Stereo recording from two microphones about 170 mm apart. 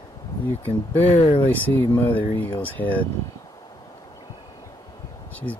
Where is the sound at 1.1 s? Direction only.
40° left (ahead or behind).